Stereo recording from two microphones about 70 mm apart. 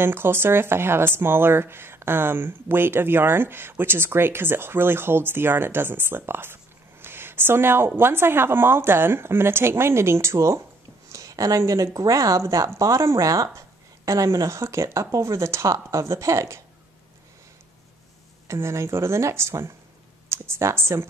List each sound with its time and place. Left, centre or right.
0.0 s a woman's voice: right
11.1 s a woman's voice: right
18.5 s a woman's voice: right